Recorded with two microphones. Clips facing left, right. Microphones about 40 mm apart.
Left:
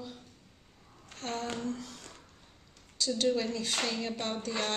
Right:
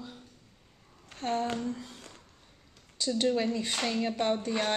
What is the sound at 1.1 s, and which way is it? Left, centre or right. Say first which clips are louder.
Speech: right 6 dB; right.